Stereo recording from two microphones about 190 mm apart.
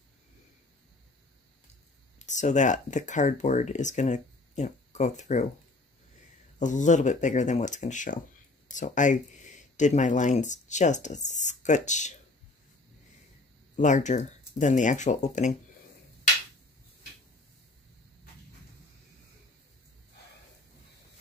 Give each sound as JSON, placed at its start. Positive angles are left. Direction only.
{"t": 2.1, "sound": "speech", "side_deg": 40}
{"t": 6.6, "sound": "speech", "side_deg": 40}
{"t": 13.7, "sound": "speech", "side_deg": 40}